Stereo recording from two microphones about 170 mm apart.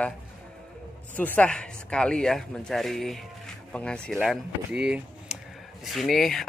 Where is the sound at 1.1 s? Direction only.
10° left (ahead or behind).